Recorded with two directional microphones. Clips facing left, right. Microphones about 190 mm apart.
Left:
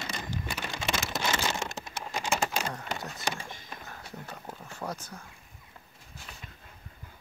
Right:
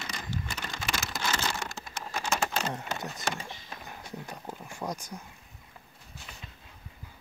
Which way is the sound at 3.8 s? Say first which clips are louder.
Right 2 dB; 15° right (ahead or behind).